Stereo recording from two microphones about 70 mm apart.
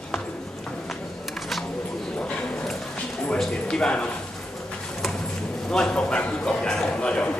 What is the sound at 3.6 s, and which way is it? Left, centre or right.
Speech, centre.